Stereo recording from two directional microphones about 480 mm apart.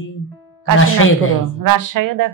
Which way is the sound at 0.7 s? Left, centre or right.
Left.